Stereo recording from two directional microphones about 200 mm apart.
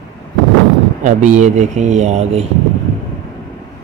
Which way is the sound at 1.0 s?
35° right (ahead or behind).